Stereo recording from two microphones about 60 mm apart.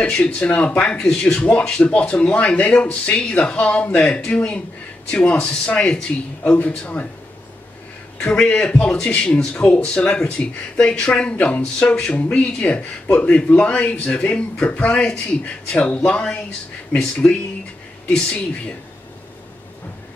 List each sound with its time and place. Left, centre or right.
0.0 s speech: centre
8.2 s speech: left